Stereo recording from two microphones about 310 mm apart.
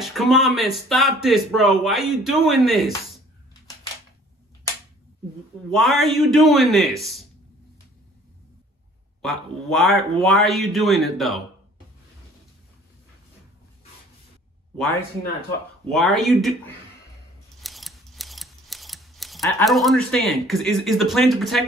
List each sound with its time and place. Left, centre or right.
0.0 s speech: centre
5.7 s speech: centre
9.2 s speech: centre
15.9 s speech: centre
17.6 s scissors: centre